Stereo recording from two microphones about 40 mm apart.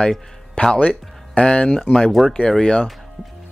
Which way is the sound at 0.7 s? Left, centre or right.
Left.